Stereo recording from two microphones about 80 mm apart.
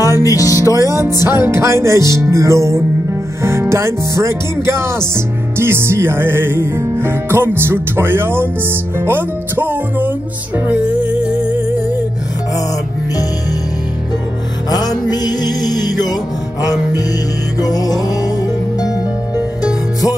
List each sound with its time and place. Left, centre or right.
0.0 s music: left
0.7 s music: right
10.7 s music: centre
14.7 s music: left